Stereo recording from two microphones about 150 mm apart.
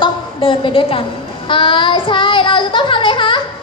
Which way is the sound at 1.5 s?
35° left (ahead or behind).